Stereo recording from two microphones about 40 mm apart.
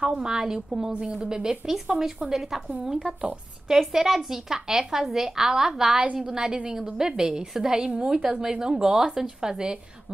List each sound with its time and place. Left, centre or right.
0.0 s speech: centre
3.6 s speech: centre